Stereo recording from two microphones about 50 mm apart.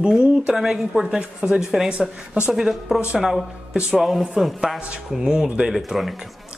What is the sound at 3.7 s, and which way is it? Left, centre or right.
Music, centre.